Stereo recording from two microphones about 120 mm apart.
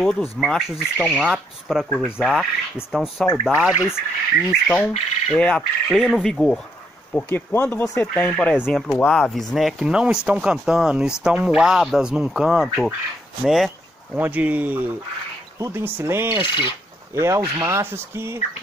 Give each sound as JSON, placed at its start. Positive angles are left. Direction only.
{"t": 0.0, "sound": "speech", "side_deg": 0}
{"t": 4.5, "sound": "speech", "side_deg": 5}
{"t": 5.9, "sound": "speech", "side_deg": 0}
{"t": 7.1, "sound": "speech", "side_deg": 15}
{"t": 8.1, "sound": "speech", "side_deg": 5}
{"t": 14.1, "sound": "speech", "side_deg": -15}
{"t": 16.4, "sound": "speech", "side_deg": 45}
{"t": 17.1, "sound": "speech", "side_deg": -25}